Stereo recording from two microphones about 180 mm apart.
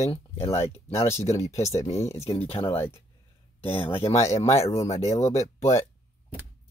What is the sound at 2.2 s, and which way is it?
Speech, 35° left (ahead or behind).